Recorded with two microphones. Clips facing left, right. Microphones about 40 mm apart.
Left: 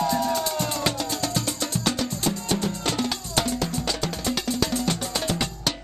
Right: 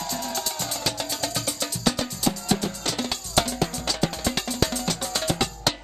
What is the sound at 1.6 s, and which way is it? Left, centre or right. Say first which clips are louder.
Music: right 3 dB; centre.